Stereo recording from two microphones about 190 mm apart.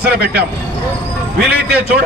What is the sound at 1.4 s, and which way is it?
Speech, 5° right (ahead or behind).